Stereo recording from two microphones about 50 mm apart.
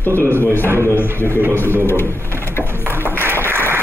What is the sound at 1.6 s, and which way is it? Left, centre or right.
Speech, right.